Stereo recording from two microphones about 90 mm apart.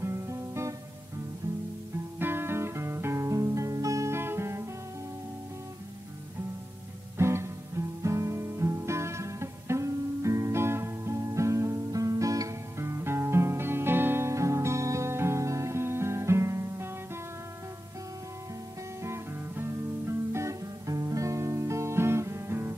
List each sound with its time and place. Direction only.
0.0 s guitar: 30° right (ahead or behind)
2.1 s music: 25° right (ahead or behind)
7.2 s music: 30° right (ahead or behind)
19.0 s music: 30° right (ahead or behind)